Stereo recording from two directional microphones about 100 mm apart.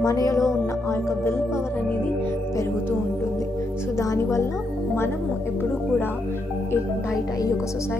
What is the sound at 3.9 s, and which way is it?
Music, 30° left (ahead or behind).